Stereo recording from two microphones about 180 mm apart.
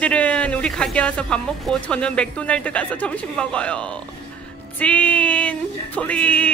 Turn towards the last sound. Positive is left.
turn(degrees=5)  # may be behind; listen again after turning